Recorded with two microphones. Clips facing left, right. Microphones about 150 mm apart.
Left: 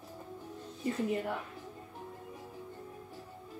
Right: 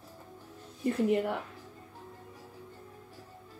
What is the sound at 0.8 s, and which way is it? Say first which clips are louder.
Speech: right 5 dB; 65° right (ahead or behind).